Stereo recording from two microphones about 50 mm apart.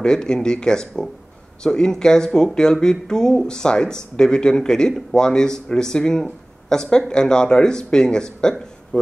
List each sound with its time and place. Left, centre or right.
0.0 s speech: centre